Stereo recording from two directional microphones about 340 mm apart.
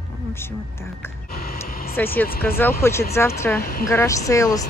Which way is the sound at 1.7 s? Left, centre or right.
Left.